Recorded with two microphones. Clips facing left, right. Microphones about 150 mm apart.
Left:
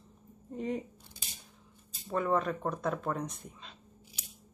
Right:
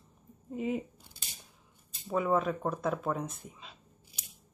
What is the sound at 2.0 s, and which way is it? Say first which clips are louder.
Speech: right 1 dB; 5° right (ahead or behind).